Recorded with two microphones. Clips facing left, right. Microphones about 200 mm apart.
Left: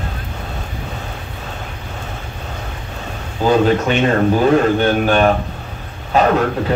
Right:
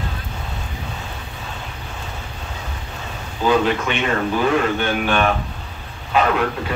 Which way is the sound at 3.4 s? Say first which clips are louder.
Left 4 dB; 40° left (ahead or behind).